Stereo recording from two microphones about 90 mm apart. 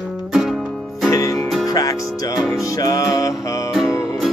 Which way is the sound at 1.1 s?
40° left (ahead or behind).